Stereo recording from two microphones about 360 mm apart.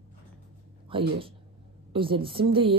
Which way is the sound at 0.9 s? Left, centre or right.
Centre.